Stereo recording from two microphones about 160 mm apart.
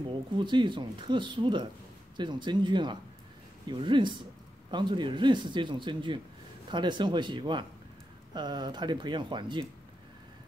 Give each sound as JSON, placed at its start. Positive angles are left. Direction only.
{"t": 0.0, "sound": "speech", "side_deg": -30}